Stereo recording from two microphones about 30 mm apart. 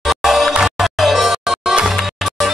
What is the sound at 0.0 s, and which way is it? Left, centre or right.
Music, centre.